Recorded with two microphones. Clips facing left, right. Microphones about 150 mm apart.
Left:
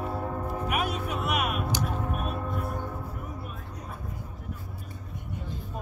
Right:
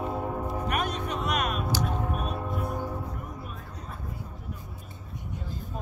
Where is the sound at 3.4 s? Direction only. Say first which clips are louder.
Left 1 dB; 5° left (ahead or behind).